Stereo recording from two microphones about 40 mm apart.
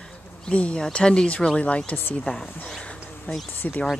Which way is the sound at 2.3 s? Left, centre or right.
Left.